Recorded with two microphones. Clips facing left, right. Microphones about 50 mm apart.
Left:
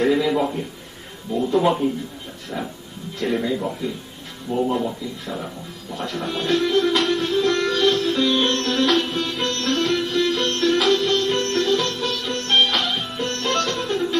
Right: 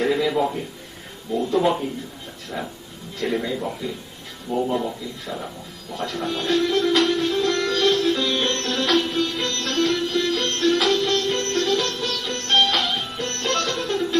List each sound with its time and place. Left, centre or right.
0.0 s a sound: centre
1.3 s speech: centre
7.4 s sitar: centre
8.8 s music: centre
11.0 s sitar: centre
11.3 s sitar: centre
11.7 s music: centre